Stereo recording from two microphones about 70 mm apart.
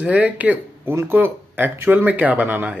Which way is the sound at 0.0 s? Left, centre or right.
Right.